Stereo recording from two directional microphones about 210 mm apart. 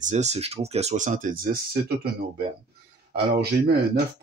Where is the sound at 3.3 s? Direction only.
50° right (ahead or behind).